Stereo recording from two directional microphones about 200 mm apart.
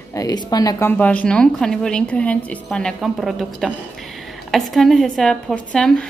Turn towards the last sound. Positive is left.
turn(degrees=5)  # may be behind; listen again after turning